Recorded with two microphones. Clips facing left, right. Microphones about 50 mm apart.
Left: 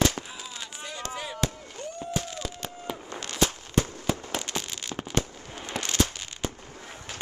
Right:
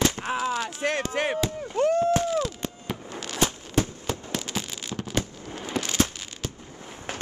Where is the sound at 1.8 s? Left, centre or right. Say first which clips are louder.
Right 16 dB; right.